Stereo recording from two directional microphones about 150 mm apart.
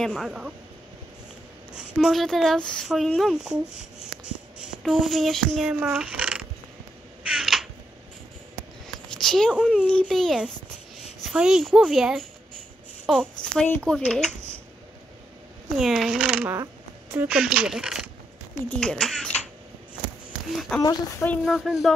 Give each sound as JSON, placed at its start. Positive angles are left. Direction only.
{"t": 0.0, "sound": "speech", "side_deg": -5}
{"t": 1.7, "sound": "speech", "side_deg": -5}
{"t": 7.3, "sound": "a sound", "side_deg": 0}
{"t": 8.8, "sound": "a sound", "side_deg": 5}
{"t": 9.6, "sound": "a child's voice", "side_deg": -10}
{"t": 13.4, "sound": "speech", "side_deg": 5}
{"t": 15.8, "sound": "speech", "side_deg": 0}
{"t": 20.5, "sound": "speech", "side_deg": 0}